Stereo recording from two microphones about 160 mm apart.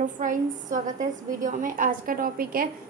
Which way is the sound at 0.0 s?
55° right (ahead or behind).